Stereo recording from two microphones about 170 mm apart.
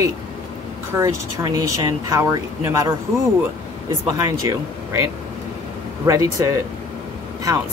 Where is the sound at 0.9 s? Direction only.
15° right (ahead or behind).